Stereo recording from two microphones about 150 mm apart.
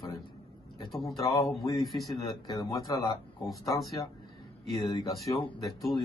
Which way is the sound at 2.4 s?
30° left (ahead or behind).